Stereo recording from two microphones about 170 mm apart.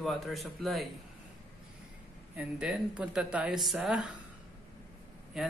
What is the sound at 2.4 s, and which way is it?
Speech, 5° right (ahead or behind).